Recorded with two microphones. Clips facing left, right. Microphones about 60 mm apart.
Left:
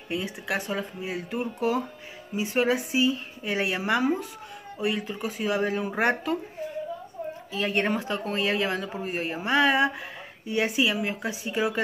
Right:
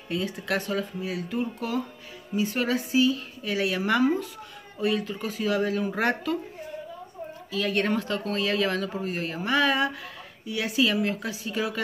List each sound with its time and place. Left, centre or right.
0.1 s speech: centre
7.5 s speech: left
10.9 s speech: centre